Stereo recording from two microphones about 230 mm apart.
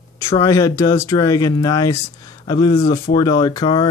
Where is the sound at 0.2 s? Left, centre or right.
Centre.